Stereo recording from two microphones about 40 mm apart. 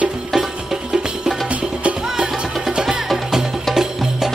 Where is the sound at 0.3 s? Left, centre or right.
Centre.